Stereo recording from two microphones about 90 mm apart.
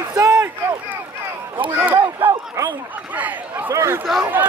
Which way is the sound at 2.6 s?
35° right (ahead or behind).